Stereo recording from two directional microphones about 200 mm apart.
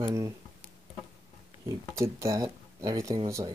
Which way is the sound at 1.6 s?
15° right (ahead or behind).